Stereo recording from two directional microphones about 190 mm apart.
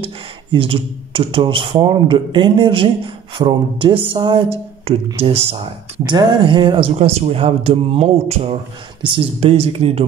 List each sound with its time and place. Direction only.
0.0 s speech: 25° right (ahead or behind)